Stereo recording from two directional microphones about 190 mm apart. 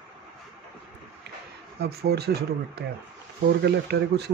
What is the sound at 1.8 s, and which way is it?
Speech, 55° right (ahead or behind).